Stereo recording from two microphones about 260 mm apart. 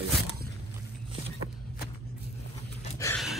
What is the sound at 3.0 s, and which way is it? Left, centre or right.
Dog, centre.